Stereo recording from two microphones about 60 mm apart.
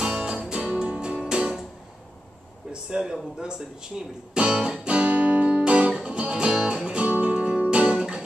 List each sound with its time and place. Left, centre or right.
0.0 s music: centre
2.7 s speech: centre
4.3 s music: centre